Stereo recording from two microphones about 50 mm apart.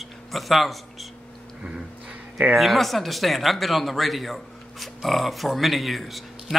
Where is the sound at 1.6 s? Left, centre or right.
Centre.